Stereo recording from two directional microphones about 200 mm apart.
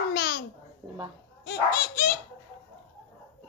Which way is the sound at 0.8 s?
20° right (ahead or behind).